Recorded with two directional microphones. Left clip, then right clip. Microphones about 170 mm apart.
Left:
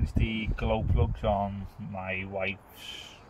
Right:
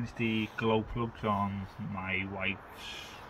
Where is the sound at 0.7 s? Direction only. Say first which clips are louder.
Left 1 dB; 55° left (ahead or behind).